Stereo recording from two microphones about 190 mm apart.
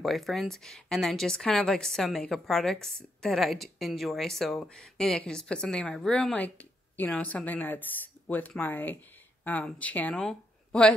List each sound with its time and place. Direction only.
0.0 s a woman's voice: centre (ahead or behind)